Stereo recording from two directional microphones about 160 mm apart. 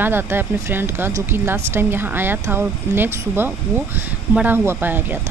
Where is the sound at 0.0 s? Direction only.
15° right (ahead or behind).